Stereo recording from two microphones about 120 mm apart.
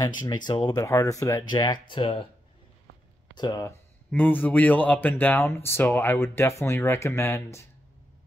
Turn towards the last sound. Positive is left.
turn(degrees=25)  # may be behind; listen again after turning